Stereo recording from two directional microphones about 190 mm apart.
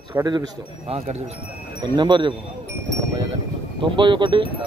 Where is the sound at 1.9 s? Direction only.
25° right (ahead or behind).